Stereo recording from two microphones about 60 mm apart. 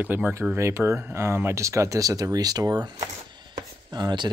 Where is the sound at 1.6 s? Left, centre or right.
Right.